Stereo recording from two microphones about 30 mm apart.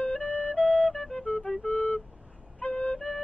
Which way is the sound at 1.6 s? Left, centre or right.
Left.